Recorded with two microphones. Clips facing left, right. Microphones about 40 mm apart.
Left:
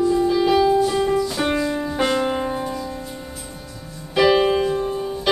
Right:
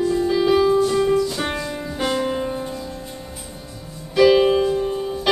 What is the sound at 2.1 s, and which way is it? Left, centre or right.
Music, centre.